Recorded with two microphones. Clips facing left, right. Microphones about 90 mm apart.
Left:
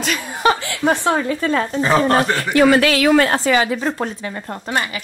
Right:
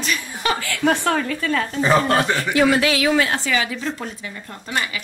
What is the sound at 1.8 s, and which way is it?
Speech, centre (ahead or behind).